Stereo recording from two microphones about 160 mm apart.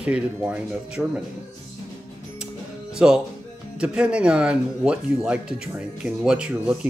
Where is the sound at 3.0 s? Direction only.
5° right (ahead or behind).